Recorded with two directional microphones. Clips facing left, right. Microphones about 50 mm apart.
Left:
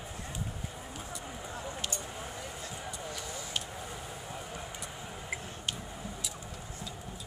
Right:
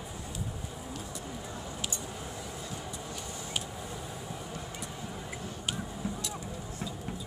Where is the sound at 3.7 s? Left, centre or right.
Centre.